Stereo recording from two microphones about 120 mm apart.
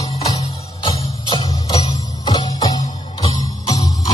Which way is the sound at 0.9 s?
35° left (ahead or behind).